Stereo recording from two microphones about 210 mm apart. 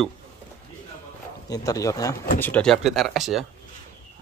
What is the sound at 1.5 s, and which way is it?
Speech, 15° left (ahead or behind).